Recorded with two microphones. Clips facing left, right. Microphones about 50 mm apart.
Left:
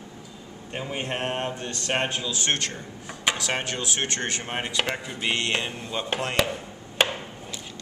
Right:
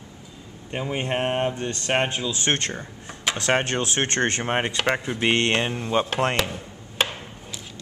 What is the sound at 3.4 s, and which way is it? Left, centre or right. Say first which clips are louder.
Speech: right 6 dB; right.